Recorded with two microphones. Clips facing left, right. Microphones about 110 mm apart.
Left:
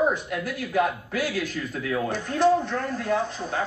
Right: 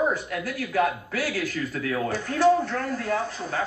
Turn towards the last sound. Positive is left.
turn(degrees=20)  # may be behind; listen again after turning